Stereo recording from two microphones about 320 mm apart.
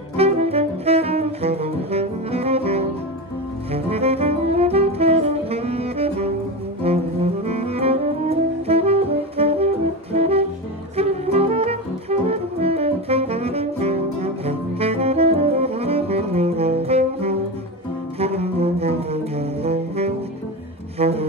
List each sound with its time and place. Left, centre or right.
0.1 s saxophone: centre
6.8 s double bass: centre
7.4 s saxophone: centre
10.1 s music: centre
18.2 s saxophone: centre
21.0 s music: centre